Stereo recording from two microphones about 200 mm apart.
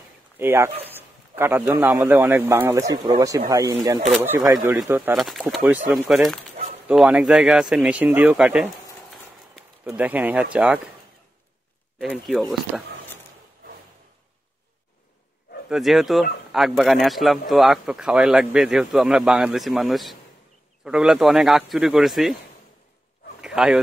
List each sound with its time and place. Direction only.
0.4 s a man's voice: 10° right (ahead or behind)
5.1 s speech: centre (ahead or behind)
9.8 s speech: 5° right (ahead or behind)
12.0 s speech: centre (ahead or behind)
15.7 s speech: centre (ahead or behind)
23.4 s speech: 5° right (ahead or behind)